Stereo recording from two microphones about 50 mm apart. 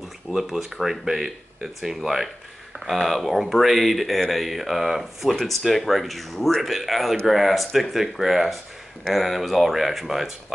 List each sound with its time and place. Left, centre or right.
0.3 s speech: centre